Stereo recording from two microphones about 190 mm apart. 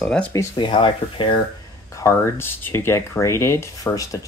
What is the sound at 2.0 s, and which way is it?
Speech, 15° left (ahead or behind).